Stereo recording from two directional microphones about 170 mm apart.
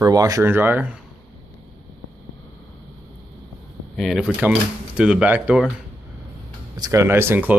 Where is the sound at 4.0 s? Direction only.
Centre (ahead or behind).